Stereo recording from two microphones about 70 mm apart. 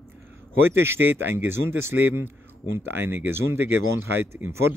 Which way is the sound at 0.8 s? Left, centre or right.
Right.